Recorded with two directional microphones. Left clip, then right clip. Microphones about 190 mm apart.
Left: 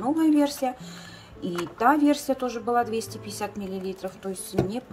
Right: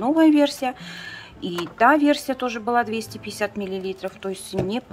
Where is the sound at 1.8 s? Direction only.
Centre (ahead or behind).